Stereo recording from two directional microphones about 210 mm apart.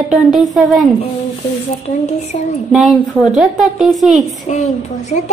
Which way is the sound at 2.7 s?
5° right (ahead or behind).